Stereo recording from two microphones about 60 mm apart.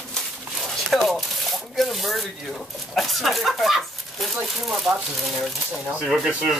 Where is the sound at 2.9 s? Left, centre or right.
Centre.